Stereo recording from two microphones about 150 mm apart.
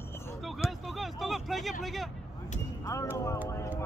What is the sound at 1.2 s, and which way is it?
Vehicle, centre (ahead or behind).